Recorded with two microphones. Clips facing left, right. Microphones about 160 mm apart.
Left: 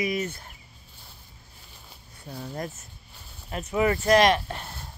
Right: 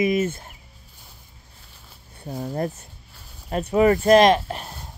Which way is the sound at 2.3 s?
40° right (ahead or behind).